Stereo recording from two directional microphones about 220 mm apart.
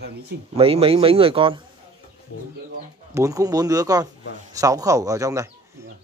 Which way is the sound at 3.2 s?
15° right (ahead or behind).